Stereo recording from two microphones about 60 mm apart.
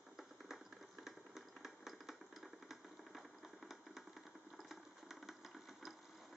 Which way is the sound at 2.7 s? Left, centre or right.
Centre.